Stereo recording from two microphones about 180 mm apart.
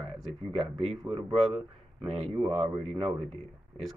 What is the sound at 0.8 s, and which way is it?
Speech, 35° right (ahead or behind).